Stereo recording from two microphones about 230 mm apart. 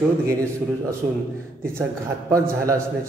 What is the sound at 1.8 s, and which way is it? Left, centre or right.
A man's voice, centre.